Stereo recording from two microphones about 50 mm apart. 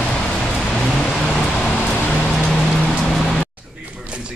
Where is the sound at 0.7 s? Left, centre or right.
Centre.